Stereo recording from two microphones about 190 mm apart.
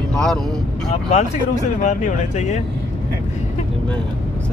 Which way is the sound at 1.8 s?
40° left (ahead or behind).